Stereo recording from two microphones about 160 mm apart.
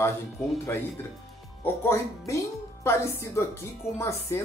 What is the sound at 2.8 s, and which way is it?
Speech, 15° left (ahead or behind).